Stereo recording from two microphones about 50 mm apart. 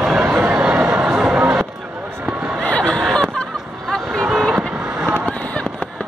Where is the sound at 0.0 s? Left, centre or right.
Centre.